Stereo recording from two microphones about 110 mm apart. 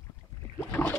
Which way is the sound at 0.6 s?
15° left (ahead or behind).